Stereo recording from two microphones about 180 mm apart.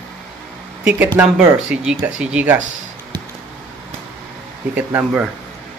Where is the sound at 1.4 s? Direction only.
5° right (ahead or behind).